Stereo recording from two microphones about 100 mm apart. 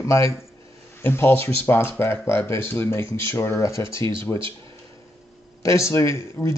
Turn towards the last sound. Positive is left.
turn(degrees=30)  # may be behind; listen again after turning